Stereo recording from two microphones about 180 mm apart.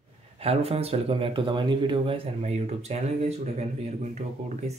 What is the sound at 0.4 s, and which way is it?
Speech, 35° right (ahead or behind).